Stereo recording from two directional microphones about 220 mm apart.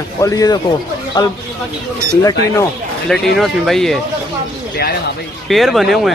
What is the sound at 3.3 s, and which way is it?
Speech, centre (ahead or behind).